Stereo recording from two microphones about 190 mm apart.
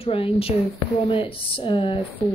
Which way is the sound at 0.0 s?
30° left (ahead or behind).